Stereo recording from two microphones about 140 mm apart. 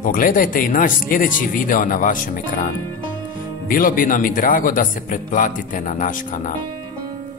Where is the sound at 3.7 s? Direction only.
80° left.